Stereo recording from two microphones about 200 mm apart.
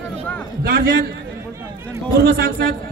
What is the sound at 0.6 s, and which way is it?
Speech, 50° right (ahead or behind).